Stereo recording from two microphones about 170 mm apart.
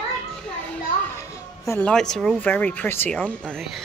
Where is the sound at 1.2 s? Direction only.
15° left (ahead or behind).